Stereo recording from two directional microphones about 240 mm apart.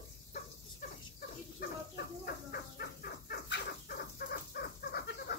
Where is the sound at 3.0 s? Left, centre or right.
Left.